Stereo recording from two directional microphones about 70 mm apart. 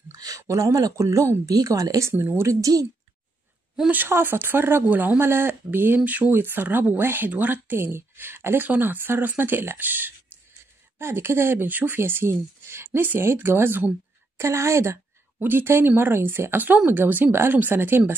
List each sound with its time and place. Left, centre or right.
0.1 s a sound: right
0.4 s speech: right
2.4 s speech: right
3.9 s speech: right
15.4 s speech: right